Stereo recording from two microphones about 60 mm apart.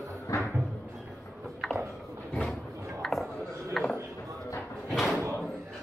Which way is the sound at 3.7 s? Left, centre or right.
Centre.